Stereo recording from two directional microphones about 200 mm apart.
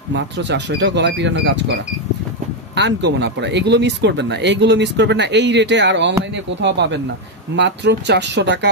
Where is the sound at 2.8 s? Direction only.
60° right (ahead or behind).